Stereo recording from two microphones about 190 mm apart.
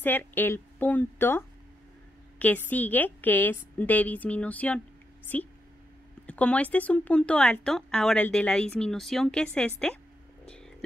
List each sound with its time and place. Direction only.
0.0 s a woman's voice: 10° left (ahead or behind)
6.2 s speech: 5° left (ahead or behind)
10.4 s a sound: 5° left (ahead or behind)